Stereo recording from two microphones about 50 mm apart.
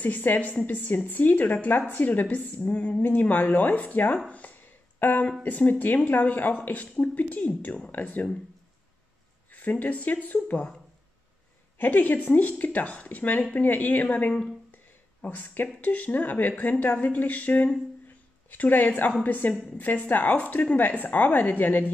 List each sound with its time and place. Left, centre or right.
0.0 s a woman's voice: left
4.3 s a sound: left
5.4 s a woman's voice: left
9.5 s a woman's voice: left
11.8 s a woman's voice: left
14.1 s speech: left
15.2 s a woman's voice: left
18.0 s a sound: left
19.2 s a woman's voice: left